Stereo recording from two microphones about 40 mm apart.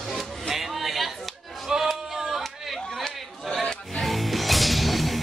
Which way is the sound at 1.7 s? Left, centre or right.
Centre.